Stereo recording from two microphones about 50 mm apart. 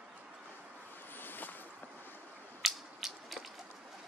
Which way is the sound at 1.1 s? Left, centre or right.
Left.